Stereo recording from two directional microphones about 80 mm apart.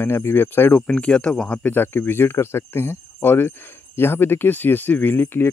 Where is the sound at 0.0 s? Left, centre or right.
Left.